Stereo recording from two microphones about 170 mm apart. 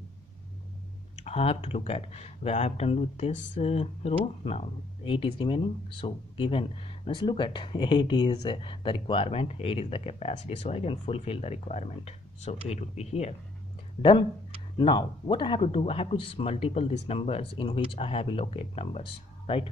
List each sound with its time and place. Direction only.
1.2 s speech: 35° left (ahead or behind)
14.8 s speech: 25° left (ahead or behind)